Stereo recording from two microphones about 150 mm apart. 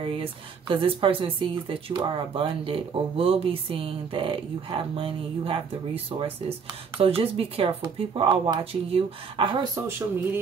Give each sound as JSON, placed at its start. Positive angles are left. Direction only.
{"t": 0.0, "sound": "speech", "side_deg": -35}
{"t": 9.8, "sound": "speech", "side_deg": -15}